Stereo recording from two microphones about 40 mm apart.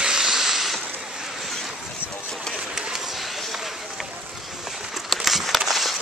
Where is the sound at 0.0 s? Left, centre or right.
Centre.